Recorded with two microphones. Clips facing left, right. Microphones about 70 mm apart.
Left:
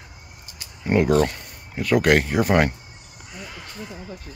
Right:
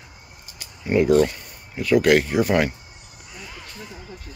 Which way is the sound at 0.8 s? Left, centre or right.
Left.